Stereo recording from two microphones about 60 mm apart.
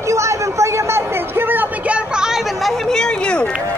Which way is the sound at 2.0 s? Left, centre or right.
Centre.